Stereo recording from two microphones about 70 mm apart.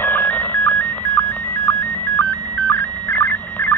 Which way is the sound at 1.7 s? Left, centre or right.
Left.